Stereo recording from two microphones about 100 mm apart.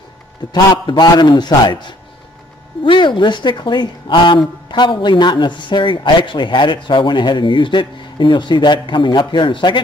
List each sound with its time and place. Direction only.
0.5 s speech: 45° left (ahead or behind)